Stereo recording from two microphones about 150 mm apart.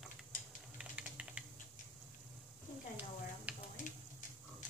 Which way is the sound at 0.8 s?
5° right (ahead or behind).